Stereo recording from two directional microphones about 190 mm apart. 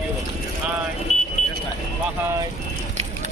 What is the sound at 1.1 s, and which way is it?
Vehicle, 35° left (ahead or behind).